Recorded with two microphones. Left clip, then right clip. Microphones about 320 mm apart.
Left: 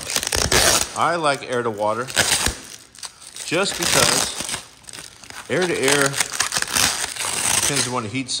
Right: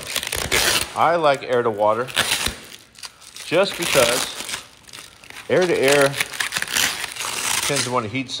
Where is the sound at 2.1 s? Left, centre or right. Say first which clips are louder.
Left 1 dB; left.